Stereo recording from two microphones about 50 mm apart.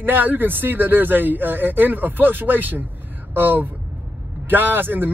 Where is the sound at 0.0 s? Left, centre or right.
Right.